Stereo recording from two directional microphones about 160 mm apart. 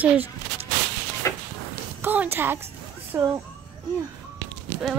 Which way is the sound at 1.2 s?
20° left (ahead or behind).